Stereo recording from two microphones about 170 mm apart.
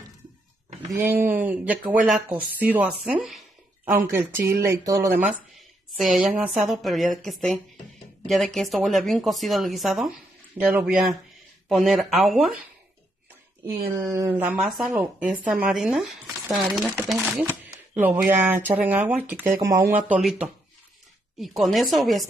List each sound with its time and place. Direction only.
0.8 s speech: 15° right (ahead or behind)
3.3 s a sound: centre (ahead or behind)
3.9 s speech: 15° right (ahead or behind)
6.2 s speech: 5° right (ahead or behind)
13.7 s speech: 15° right (ahead or behind)
19.9 s speech: 5° right (ahead or behind)